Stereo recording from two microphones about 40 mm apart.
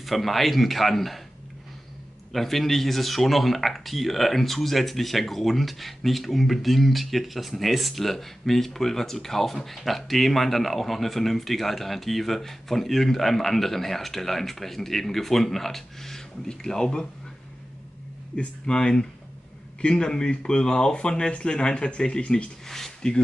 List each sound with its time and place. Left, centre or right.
0.0 s speech: centre
2.3 s speech: centre
18.4 s speech: left
22.7 s a sound: centre